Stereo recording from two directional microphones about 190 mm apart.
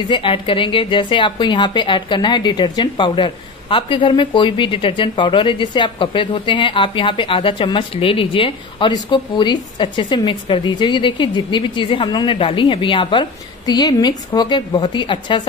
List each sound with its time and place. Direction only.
0.1 s a woman's voice: 25° left (ahead or behind)